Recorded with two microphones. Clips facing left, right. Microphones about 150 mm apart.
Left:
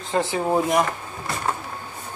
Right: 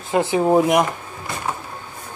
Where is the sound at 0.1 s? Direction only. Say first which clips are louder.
Right 5 dB; 15° right (ahead or behind).